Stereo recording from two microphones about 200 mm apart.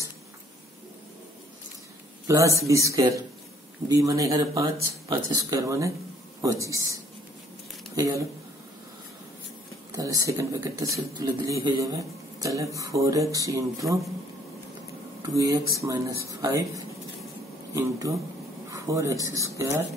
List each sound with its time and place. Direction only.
2.2 s speech: 15° right (ahead or behind)
9.9 s speech: 15° right (ahead or behind)
15.2 s speech: 15° right (ahead or behind)